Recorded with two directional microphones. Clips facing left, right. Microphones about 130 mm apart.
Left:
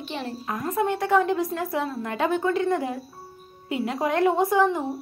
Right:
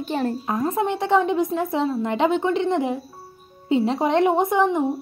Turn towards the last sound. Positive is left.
turn(degrees=-20)  # may be behind; listen again after turning